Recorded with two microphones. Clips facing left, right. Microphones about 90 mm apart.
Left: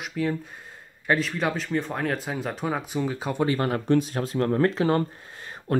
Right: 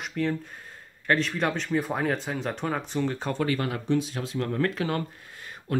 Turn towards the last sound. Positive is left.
turn(degrees=30)  # may be behind; listen again after turning